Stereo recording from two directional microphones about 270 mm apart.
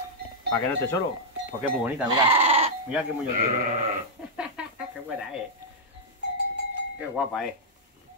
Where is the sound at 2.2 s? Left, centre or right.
Right.